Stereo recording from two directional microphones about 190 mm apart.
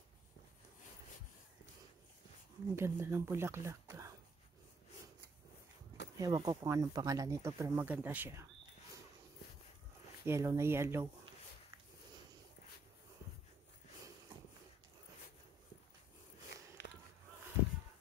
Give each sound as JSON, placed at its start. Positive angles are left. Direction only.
{"t": 2.7, "sound": "speech", "side_deg": -15}
{"t": 6.1, "sound": "speech", "side_deg": -20}
{"t": 10.2, "sound": "speech", "side_deg": -15}
{"t": 16.8, "sound": "a sound", "side_deg": 70}